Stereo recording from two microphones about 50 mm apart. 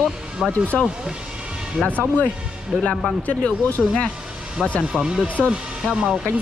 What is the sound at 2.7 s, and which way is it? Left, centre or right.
Speech, centre.